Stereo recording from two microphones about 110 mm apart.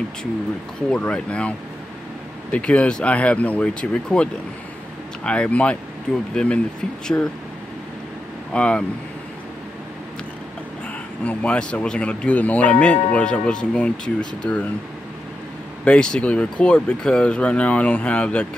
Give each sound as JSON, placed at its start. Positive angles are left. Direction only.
{"t": 0.8, "sound": "speech", "side_deg": 10}
{"t": 2.5, "sound": "speech", "side_deg": 10}
{"t": 7.1, "sound": "speech", "side_deg": 20}
{"t": 8.5, "sound": "speech", "side_deg": 10}
{"t": 11.2, "sound": "speech", "side_deg": 10}
{"t": 15.8, "sound": "speech", "side_deg": 10}